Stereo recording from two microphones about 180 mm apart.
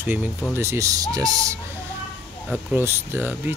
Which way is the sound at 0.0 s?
10° right (ahead or behind).